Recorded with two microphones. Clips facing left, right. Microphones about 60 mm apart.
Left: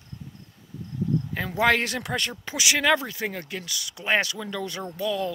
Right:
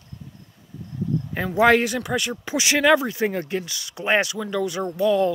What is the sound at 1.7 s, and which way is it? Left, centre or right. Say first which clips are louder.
Speech: right 5 dB; centre.